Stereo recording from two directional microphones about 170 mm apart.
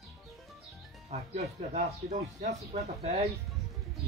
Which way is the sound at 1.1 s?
40° right (ahead or behind).